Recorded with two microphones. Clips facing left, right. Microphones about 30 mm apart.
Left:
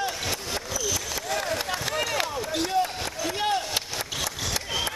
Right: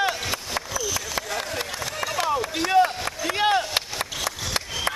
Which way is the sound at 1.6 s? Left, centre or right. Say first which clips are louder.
Left 3 dB; centre.